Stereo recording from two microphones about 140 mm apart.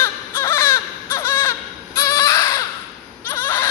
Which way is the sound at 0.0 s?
15° left (ahead or behind).